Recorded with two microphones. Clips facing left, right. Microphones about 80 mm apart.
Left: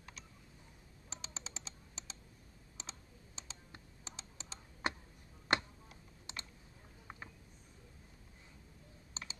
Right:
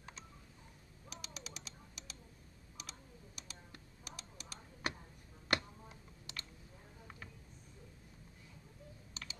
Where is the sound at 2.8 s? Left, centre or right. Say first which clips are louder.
Even; left.